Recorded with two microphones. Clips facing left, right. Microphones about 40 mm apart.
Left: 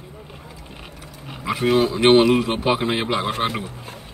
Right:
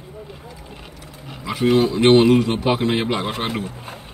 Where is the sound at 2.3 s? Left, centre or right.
Centre.